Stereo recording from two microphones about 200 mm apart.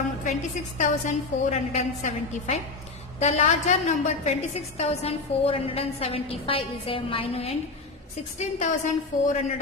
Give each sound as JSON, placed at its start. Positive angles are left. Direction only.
{"t": 0.7, "sound": "a woman's voice", "side_deg": 35}